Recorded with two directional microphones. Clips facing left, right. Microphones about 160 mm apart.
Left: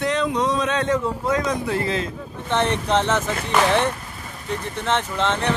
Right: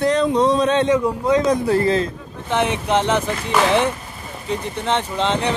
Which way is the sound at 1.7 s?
40° right (ahead or behind).